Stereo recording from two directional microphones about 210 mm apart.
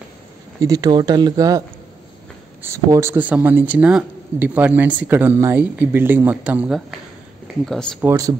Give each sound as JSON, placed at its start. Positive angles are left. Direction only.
{"t": 0.6, "sound": "speech", "side_deg": -20}
{"t": 2.6, "sound": "speech", "side_deg": -15}
{"t": 8.0, "sound": "speech", "side_deg": -15}